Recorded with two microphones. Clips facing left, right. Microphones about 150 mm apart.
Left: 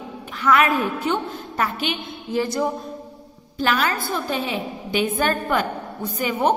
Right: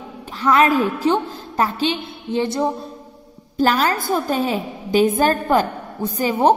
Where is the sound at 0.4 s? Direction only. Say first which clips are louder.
Right 3 dB; 35° right (ahead or behind).